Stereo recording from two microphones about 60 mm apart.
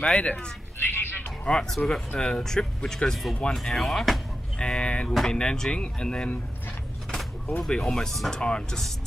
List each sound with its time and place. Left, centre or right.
0.0 s speech: centre
0.7 s a sound: left
1.4 s speech: centre
4.6 s speech: centre
7.7 s speech: centre